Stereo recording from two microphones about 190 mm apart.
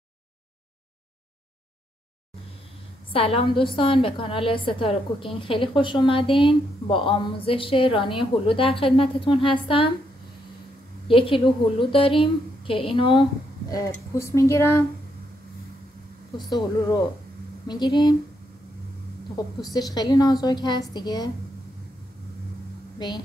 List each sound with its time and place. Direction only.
3.1 s a woman's voice: 30° left (ahead or behind)
11.1 s a woman's voice: 25° left (ahead or behind)
16.4 s a woman's voice: 20° left (ahead or behind)
19.3 s a woman's voice: 20° left (ahead or behind)
22.9 s a woman's voice: 20° left (ahead or behind)